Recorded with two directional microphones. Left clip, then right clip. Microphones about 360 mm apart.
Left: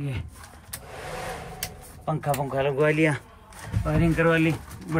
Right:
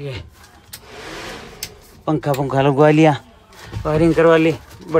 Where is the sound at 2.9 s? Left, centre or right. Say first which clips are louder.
Right 10 dB; centre.